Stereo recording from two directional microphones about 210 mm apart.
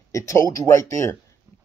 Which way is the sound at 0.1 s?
15° left (ahead or behind).